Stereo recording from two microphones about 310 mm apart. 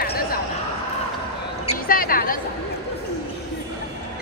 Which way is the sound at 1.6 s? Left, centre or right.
Left.